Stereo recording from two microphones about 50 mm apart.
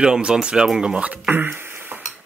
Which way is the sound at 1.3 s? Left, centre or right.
Right.